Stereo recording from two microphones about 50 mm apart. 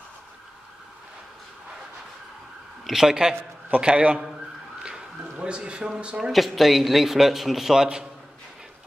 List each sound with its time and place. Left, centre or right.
2.9 s speech: centre
3.7 s a man's voice: right
6.3 s a man's voice: centre